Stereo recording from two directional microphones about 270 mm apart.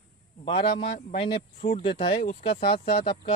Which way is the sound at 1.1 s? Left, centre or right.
Left.